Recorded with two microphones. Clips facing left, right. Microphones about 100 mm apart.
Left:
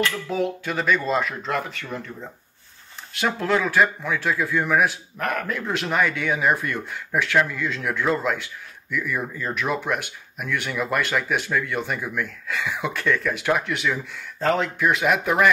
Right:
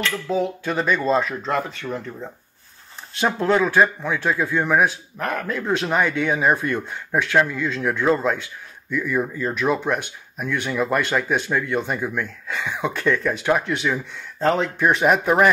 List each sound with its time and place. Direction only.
0.3 s a man's voice: 30° right (ahead or behind)
3.2 s a man's voice: 25° right (ahead or behind)